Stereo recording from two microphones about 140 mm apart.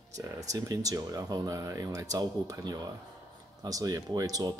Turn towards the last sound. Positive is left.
turn(degrees=-25)  # may be behind; listen again after turning